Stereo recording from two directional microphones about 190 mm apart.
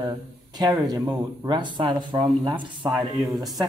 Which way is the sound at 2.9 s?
Centre (ahead or behind).